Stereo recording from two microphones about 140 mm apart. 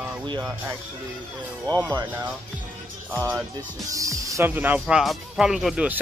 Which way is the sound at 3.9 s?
25° right (ahead or behind).